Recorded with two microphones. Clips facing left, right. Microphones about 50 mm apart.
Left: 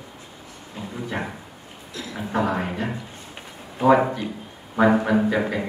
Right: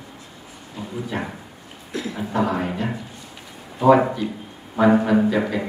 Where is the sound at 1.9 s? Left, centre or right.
Right.